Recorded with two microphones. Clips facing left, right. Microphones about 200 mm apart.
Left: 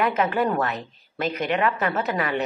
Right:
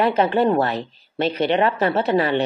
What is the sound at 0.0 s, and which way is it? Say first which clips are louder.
Speech: right 5 dB; 30° right (ahead or behind).